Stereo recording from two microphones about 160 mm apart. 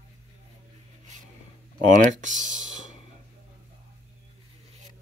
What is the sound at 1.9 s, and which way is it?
Speech, 50° right (ahead or behind).